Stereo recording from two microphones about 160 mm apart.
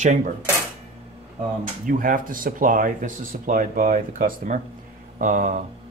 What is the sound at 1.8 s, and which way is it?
Speech, 60° right (ahead or behind).